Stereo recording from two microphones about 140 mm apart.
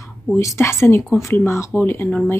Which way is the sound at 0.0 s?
20° left (ahead or behind).